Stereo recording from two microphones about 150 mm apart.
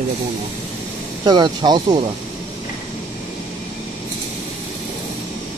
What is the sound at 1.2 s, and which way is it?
Speech, 30° right (ahead or behind).